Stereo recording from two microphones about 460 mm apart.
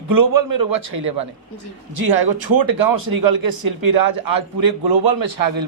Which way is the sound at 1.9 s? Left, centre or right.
Right.